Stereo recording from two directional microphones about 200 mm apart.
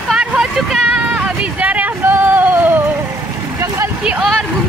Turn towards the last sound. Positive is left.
turn(degrees=0)  # may be behind; listen again after turning